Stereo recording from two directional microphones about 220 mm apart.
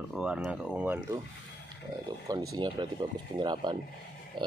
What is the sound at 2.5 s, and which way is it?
Speech, 15° right (ahead or behind).